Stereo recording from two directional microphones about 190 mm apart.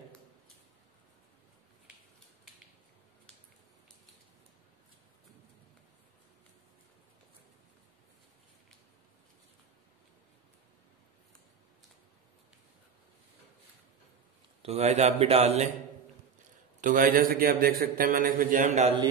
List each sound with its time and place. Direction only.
14.6 s a man's voice: 35° right (ahead or behind)
16.8 s a man's voice: 45° right (ahead or behind)